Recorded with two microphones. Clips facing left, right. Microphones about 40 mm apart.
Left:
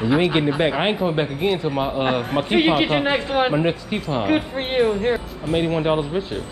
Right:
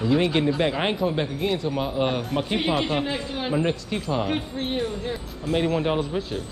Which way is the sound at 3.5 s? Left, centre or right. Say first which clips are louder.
Left 3 dB; left.